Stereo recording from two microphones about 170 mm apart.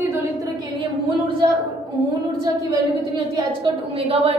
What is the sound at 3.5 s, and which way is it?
Speech, 35° right (ahead or behind).